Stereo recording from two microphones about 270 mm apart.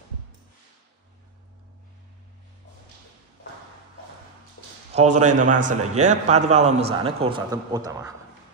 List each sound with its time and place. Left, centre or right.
4.9 s a man's voice: right